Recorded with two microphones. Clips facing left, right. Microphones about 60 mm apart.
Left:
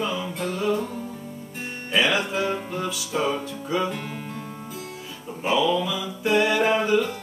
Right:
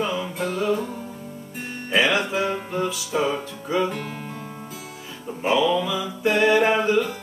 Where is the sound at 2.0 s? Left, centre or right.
Centre.